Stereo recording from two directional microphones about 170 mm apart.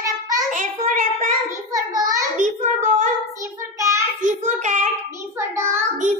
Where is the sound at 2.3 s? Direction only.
45° right (ahead or behind).